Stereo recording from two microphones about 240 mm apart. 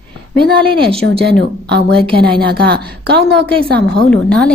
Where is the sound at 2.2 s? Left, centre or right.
Right.